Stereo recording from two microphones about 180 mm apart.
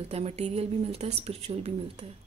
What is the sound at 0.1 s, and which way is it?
A woman's voice, 35° right (ahead or behind).